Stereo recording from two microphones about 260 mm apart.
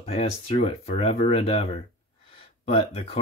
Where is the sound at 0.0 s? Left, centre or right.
Left.